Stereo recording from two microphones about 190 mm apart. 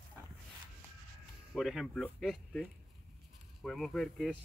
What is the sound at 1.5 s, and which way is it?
Speech, centre (ahead or behind).